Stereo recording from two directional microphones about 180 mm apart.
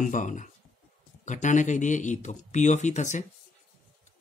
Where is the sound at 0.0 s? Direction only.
45° left (ahead or behind).